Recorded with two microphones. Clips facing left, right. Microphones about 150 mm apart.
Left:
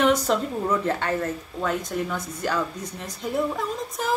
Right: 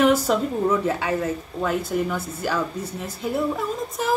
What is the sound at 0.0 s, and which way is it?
Speech, 5° right (ahead or behind).